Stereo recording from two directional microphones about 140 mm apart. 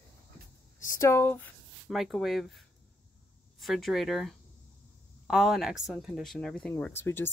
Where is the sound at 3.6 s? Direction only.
Centre (ahead or behind).